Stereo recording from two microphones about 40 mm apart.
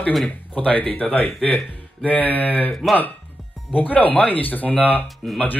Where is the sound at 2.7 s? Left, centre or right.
Centre.